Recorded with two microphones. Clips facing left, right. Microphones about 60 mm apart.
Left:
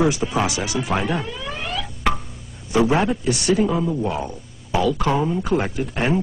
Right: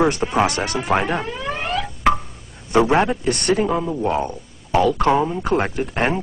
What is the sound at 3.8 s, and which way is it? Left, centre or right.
Speech, centre.